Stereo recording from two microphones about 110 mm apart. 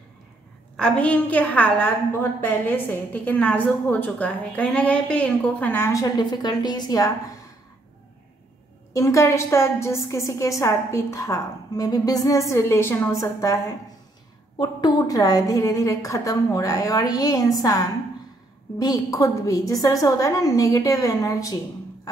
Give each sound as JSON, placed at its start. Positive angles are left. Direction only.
{"t": 0.7, "sound": "a woman's voice", "side_deg": 10}
{"t": 8.9, "sound": "a woman's voice", "side_deg": 30}